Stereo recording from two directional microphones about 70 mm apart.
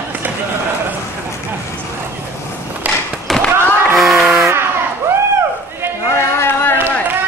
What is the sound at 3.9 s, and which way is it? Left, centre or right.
Music, centre.